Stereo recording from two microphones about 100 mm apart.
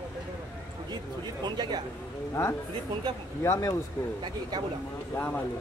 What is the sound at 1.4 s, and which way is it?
Speech, 45° right (ahead or behind).